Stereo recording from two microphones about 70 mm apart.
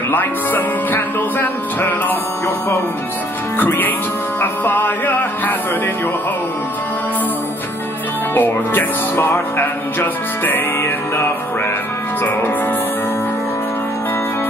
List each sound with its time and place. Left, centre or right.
0.1 s music: left
3.5 s music: left
8.4 s music: left